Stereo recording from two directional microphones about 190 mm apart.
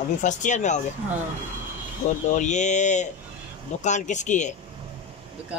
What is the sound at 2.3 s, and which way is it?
Speech, 40° left (ahead or behind).